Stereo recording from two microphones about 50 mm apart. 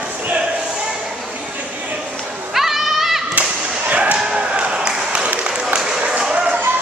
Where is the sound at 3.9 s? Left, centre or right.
Right.